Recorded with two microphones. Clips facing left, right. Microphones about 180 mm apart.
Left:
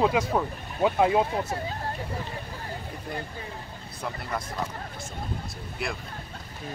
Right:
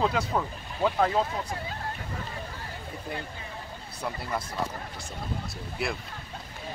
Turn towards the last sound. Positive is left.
turn(degrees=0)  # may be behind; listen again after turning